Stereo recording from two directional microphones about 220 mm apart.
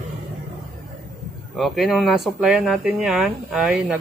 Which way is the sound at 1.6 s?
Centre (ahead or behind).